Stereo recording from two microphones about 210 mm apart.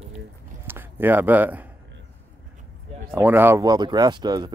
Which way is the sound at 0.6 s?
10° right (ahead or behind).